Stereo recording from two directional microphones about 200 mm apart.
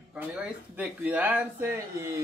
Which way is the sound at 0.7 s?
10° right (ahead or behind).